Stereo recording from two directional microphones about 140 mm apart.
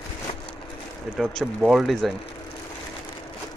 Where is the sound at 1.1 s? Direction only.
Centre (ahead or behind).